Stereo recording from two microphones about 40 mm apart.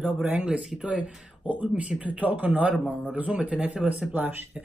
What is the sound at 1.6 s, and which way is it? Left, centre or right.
Speech, right.